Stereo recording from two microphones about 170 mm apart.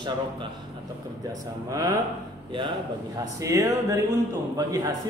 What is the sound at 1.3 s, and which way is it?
Speech, 20° right (ahead or behind).